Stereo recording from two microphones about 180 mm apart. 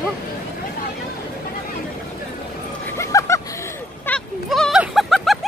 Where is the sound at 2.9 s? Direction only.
15° left (ahead or behind).